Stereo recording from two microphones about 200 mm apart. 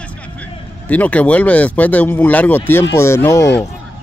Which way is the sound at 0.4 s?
5° left (ahead or behind).